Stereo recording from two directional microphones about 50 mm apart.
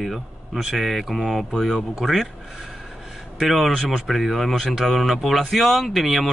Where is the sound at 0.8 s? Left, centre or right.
Centre.